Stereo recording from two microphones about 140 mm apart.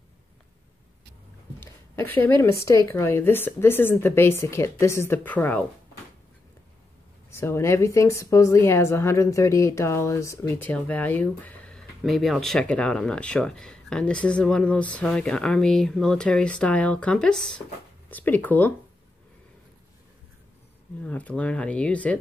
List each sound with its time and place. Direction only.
1.6 s a woman's voice: 15° left (ahead or behind)
7.2 s a woman's voice: 20° left (ahead or behind)
21.0 s a woman's voice: 10° left (ahead or behind)